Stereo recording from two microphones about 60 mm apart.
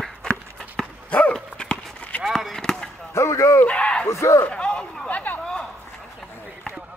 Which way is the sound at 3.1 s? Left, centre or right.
Left.